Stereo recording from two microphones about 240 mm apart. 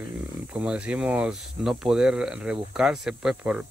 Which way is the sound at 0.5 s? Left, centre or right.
Centre.